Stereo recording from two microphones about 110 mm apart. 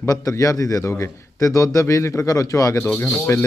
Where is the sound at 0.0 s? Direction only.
30° left (ahead or behind).